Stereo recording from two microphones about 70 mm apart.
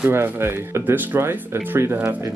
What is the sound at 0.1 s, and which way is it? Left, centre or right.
Speech, right.